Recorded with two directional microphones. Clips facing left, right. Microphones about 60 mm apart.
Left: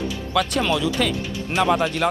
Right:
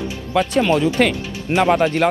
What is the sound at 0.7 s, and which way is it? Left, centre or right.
Speech, right.